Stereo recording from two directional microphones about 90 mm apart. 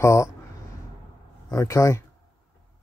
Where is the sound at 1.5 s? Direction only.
35° left (ahead or behind).